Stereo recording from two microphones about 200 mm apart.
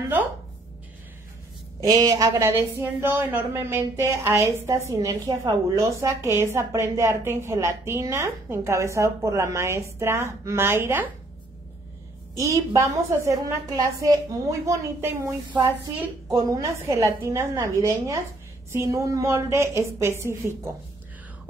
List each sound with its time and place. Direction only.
1.8 s a woman's voice: 20° right (ahead or behind)
12.4 s a woman's voice: 15° right (ahead or behind)